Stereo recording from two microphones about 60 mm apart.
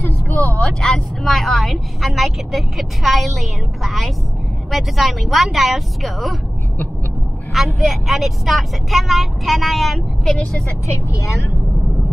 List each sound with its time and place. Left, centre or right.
0.0 s vehicle: left
0.7 s a woman's voice: centre
7.5 s speech: centre
11.1 s a woman's voice: left